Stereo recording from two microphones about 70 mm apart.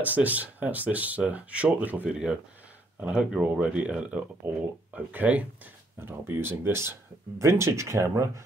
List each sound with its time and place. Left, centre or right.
0.0 s speech: right
2.0 s speech: centre; by 8.3 s right